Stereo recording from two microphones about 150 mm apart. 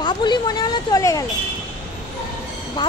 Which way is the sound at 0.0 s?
30° left (ahead or behind).